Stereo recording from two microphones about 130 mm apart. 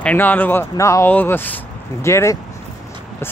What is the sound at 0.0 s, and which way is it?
Speech, 15° left (ahead or behind).